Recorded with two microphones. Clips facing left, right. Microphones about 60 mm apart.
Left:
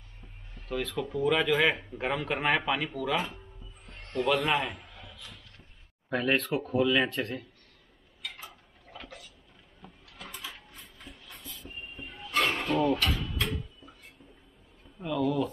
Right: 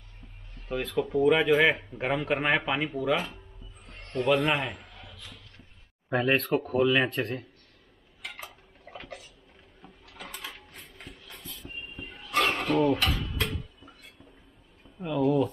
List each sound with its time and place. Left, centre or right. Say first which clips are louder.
0.8 s a man's voice: right 6 dB; centre
6.0 s speech: right 3 dB; centre
6.3 s a man's voice: right 1 dB; centre
10.2 s coin: right 1 dB; right
12.1 s a sound: right 1 dB; right
12.4 s a sound: right 2 dB; centre
15.1 s speech: right 4 dB; centre